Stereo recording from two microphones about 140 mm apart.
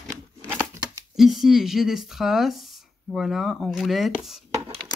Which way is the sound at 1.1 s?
Centre (ahead or behind).